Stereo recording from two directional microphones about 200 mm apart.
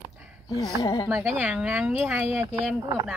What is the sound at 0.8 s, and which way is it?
Speech, 15° left (ahead or behind).